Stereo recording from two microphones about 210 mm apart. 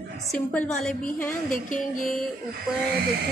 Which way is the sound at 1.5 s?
40° left (ahead or behind).